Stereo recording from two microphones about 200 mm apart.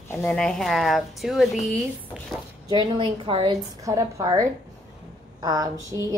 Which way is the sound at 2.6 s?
20° right (ahead or behind).